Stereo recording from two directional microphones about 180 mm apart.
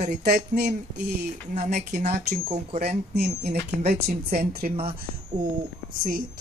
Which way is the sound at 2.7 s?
35° right (ahead or behind).